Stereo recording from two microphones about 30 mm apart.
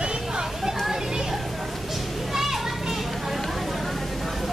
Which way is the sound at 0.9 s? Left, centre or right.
Centre.